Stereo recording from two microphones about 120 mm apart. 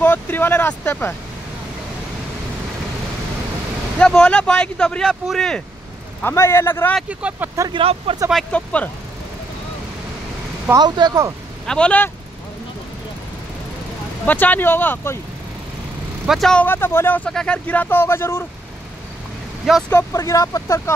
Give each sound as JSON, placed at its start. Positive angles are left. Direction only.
{"t": 0.0, "sound": "speech", "side_deg": 15}
{"t": 4.0, "sound": "speech", "side_deg": 5}
{"t": 6.2, "sound": "speech", "side_deg": 20}
{"t": 7.1, "sound": "speech", "side_deg": -10}
{"t": 7.7, "sound": "speech", "side_deg": -55}
{"t": 8.3, "sound": "speech", "side_deg": 5}
{"t": 10.7, "sound": "speech", "side_deg": -35}
{"t": 11.6, "sound": "speech", "side_deg": 5}
{"t": 14.2, "sound": "speech", "side_deg": 15}
{"t": 16.3, "sound": "speech", "side_deg": 5}
{"t": 16.6, "sound": "speech", "side_deg": 20}
{"t": 19.9, "sound": "speech", "side_deg": 20}